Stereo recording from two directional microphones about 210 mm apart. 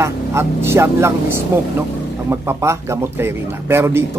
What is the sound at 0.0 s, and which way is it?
Speech, 15° right (ahead or behind).